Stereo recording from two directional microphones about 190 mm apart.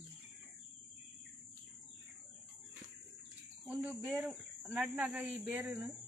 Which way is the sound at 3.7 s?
5° right (ahead or behind).